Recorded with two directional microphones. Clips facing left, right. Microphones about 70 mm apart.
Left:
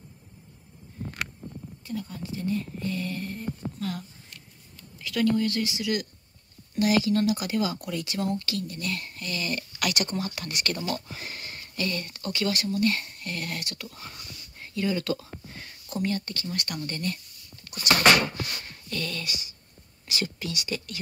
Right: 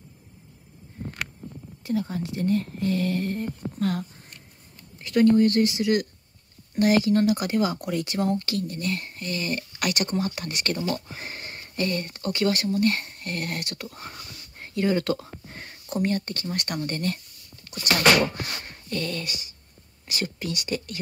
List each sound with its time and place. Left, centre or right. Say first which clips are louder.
1.9 s speech: right 7 dB; right
4.9 s speech: right 6 dB; right
18.6 s a sound: right 3 dB; right
20.1 s speech: right 2 dB; right